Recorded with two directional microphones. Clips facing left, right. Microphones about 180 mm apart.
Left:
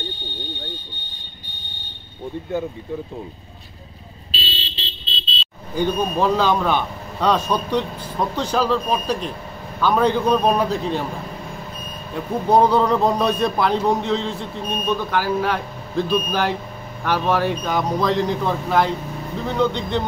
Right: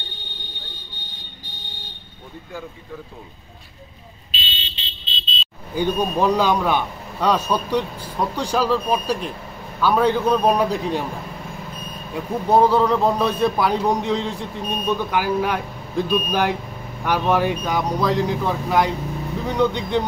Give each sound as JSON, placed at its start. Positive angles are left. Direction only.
{"t": 4.3, "sound": "a sound", "side_deg": 35}
{"t": 5.4, "sound": "smoke detector", "side_deg": 0}
{"t": 6.1, "sound": "speech", "side_deg": -15}
{"t": 12.1, "sound": "speech", "side_deg": -5}